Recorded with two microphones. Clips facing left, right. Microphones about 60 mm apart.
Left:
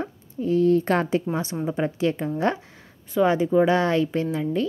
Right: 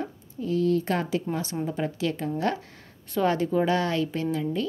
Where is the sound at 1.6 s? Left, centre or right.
Left.